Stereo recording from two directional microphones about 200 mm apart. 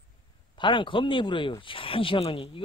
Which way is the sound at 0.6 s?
25° left (ahead or behind).